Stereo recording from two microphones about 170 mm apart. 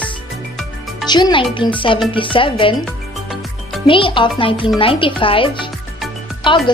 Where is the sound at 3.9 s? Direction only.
30° left (ahead or behind).